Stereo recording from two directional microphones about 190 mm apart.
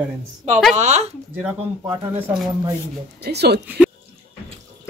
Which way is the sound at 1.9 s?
10° right (ahead or behind).